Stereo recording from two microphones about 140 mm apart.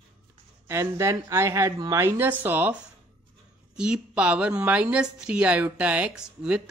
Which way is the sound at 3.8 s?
10° right (ahead or behind).